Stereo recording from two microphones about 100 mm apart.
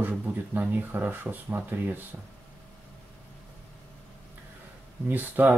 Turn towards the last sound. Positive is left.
turn(degrees=-15)  # may be behind; listen again after turning